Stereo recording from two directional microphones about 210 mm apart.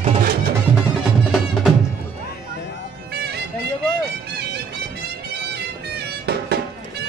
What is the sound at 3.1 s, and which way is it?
Music, 50° right (ahead or behind).